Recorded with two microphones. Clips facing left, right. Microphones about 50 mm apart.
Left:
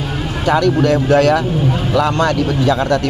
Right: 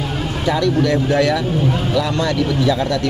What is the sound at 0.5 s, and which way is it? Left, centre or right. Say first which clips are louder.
Speech: left 4 dB; left.